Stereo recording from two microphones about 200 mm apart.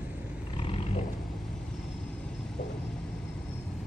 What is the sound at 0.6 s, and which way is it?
Roaring cats, 30° left (ahead or behind).